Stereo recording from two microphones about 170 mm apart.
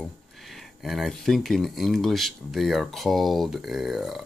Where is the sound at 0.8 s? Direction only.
Centre (ahead or behind).